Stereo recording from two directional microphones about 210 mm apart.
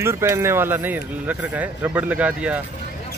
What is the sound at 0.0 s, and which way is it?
Speech, 10° right (ahead or behind).